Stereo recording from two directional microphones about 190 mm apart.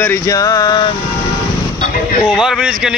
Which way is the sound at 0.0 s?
15° left (ahead or behind).